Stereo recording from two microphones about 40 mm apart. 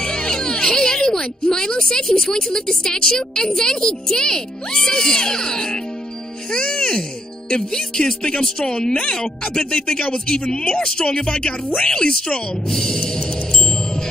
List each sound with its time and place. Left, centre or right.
0.0 s speech: centre